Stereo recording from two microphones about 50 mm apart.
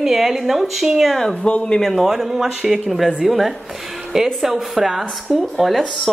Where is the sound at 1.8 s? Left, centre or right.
Centre.